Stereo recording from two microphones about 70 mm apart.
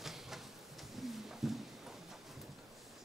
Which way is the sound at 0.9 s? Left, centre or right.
Centre.